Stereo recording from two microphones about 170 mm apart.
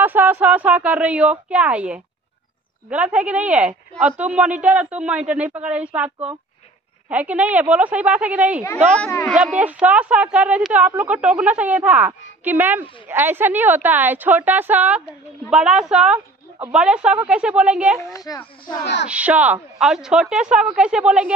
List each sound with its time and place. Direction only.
0.0 s speech: 10° right (ahead or behind)
8.9 s speech: 10° left (ahead or behind)
9.3 s a woman's voice: 5° right (ahead or behind)
18.1 s a child's voice: 20° left (ahead or behind)
19.0 s a woman's voice: 10° right (ahead or behind)